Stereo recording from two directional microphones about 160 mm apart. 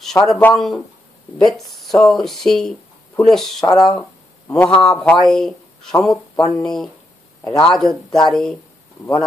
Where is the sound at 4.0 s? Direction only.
10° left (ahead or behind).